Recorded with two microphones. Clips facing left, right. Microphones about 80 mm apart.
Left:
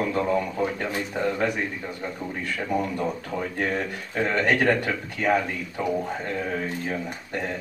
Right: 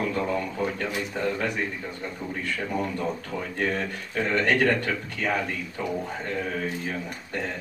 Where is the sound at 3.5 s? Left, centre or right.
Centre.